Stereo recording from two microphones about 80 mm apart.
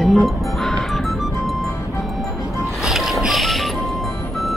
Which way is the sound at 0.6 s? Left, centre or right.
Centre.